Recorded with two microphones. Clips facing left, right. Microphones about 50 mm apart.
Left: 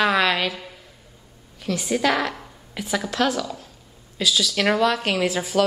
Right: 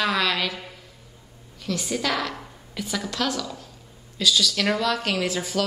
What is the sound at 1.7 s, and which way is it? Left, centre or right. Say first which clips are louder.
Speech: left 5 dB; centre.